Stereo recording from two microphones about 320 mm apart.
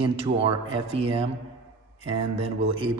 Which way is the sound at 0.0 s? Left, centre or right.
Centre.